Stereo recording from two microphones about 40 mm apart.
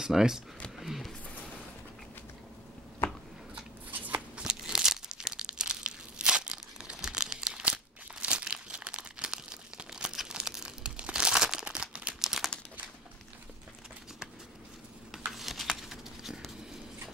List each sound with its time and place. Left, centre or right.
0.0 s speech: centre
0.7 s a sound: centre
3.0 s a sound: left
3.9 s shuffling cards: right
4.4 s crumpling: centre
7.6 s crumpling: right
11.0 s crumpling: right
12.2 s crumpling: centre
15.0 s a sound: centre